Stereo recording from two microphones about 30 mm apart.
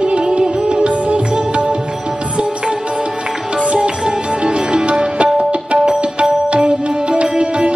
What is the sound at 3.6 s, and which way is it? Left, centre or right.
Music, right.